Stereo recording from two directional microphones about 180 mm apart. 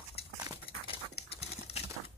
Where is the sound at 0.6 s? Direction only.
30° left (ahead or behind).